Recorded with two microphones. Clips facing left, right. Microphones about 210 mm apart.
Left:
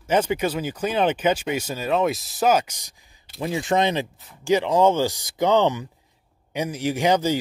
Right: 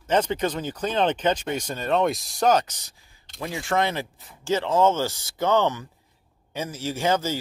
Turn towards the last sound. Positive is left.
turn(degrees=15)  # may be behind; listen again after turning